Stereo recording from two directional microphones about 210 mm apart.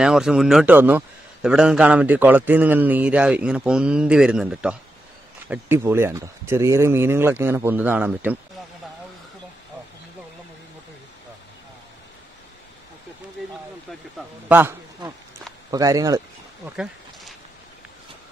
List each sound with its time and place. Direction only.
0.0 s a man's voice: centre (ahead or behind)
14.5 s speech: 10° right (ahead or behind)
16.7 s a sound: centre (ahead or behind)